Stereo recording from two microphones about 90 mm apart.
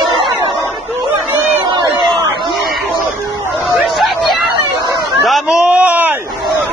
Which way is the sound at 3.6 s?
Centre (ahead or behind).